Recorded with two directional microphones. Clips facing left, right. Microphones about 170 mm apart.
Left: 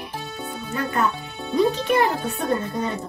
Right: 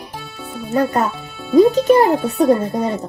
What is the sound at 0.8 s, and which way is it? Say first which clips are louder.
A child's voice: right 7 dB; 40° right (ahead or behind).